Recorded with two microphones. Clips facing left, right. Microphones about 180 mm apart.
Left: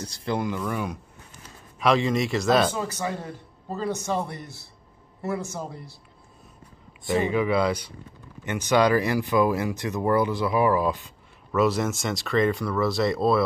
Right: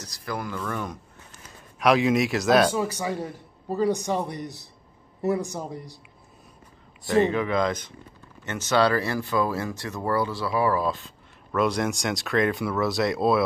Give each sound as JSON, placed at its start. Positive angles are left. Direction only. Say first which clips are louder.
{"t": 0.0, "sound": "speech", "louder": "left 5 dB", "side_deg": 25}
{"t": 1.8, "sound": "speech", "louder": "right 2 dB", "side_deg": -5}
{"t": 2.7, "sound": "a man's voice", "louder": "right 2 dB", "side_deg": -15}
{"t": 7.2, "sound": "speech", "louder": "left 1 dB", "side_deg": 10}
{"t": 11.5, "sound": "speech", "louder": "left 1 dB", "side_deg": 5}